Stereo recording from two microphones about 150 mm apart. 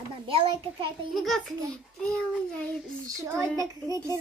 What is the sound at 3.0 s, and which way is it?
A woman's voice, 20° right (ahead or behind).